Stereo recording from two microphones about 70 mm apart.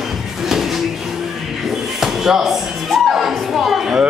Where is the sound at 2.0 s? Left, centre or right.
Centre.